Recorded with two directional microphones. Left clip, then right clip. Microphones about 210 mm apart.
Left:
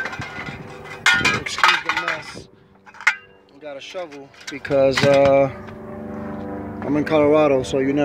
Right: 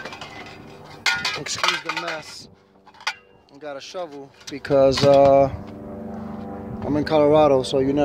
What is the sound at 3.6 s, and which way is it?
Speech, 25° right (ahead or behind).